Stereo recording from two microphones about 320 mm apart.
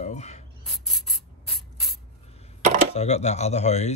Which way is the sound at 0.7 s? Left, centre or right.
Centre.